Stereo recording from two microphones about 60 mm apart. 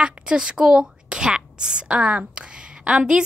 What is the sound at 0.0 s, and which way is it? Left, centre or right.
A woman's voice, centre.